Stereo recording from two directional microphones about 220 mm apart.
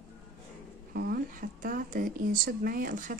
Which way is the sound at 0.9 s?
40° right (ahead or behind).